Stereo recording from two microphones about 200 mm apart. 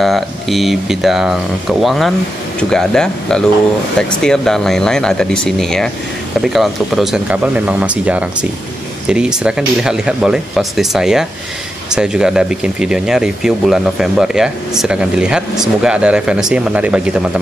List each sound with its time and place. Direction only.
0.0 s speech: centre (ahead or behind)